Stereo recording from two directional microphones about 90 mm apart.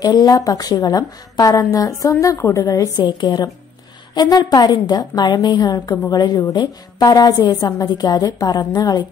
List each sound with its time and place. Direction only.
0.0 s a woman's voice: 45° left (ahead or behind)
3.0 s a woman's voice: 60° left (ahead or behind)